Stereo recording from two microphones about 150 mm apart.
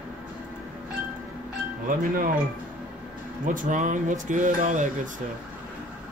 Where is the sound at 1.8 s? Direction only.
70° right (ahead or behind).